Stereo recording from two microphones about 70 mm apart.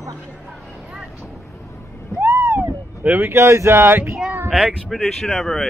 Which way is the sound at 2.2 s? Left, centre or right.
Right.